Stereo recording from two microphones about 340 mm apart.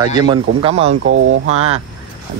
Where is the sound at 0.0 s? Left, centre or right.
Centre.